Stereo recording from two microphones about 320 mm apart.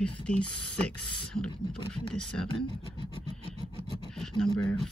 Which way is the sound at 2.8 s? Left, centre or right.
Centre.